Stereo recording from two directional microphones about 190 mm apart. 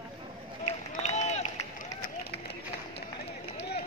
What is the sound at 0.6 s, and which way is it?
Run, 35° left (ahead or behind).